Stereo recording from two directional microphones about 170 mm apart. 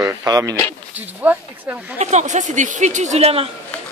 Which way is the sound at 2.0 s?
45° right (ahead or behind).